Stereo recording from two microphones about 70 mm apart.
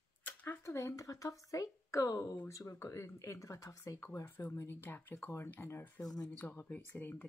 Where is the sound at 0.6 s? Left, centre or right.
Left.